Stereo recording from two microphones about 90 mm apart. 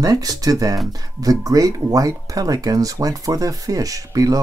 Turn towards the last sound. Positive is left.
turn(degrees=-40)  # may be behind; listen again after turning